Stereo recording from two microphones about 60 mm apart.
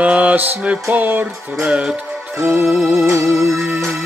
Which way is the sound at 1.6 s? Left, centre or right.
Centre.